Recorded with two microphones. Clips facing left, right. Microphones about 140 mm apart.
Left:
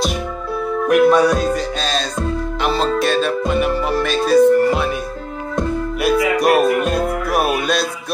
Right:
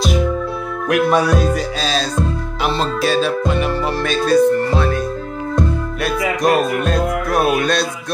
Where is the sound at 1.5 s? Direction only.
Centre (ahead or behind).